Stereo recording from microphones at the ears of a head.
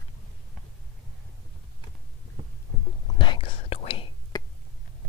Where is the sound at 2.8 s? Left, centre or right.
Left.